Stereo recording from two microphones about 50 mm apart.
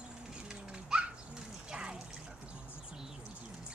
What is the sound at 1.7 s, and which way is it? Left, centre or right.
Water, centre.